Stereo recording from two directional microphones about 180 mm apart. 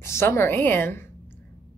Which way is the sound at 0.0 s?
15° left (ahead or behind).